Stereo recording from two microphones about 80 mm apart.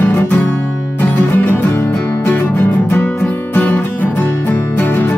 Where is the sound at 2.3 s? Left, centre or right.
Left.